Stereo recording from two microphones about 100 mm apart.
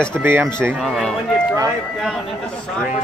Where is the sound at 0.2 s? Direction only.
20° right (ahead or behind).